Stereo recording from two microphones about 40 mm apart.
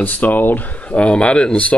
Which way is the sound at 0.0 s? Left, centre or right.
Left.